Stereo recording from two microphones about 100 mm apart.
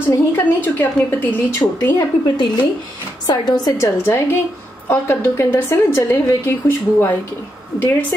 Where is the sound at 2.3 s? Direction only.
50° left (ahead or behind).